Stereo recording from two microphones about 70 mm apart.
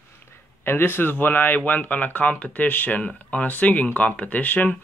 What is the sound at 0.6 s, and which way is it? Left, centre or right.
Speech, left.